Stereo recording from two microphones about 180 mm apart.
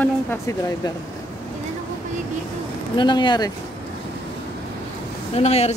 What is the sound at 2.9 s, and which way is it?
Speech, 25° left (ahead or behind).